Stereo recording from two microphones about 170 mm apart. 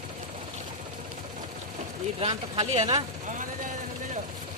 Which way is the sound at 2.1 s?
35° right (ahead or behind).